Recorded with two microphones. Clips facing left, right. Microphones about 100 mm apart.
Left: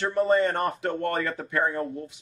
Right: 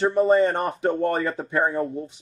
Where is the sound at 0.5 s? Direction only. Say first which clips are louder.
Right 4 dB; 25° right (ahead or behind).